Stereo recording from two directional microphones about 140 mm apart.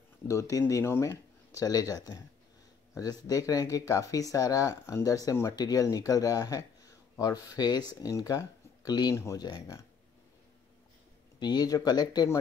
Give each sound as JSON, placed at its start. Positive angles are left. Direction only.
{"t": 0.3, "sound": "speech", "side_deg": 20}
{"t": 11.3, "sound": "speech", "side_deg": 30}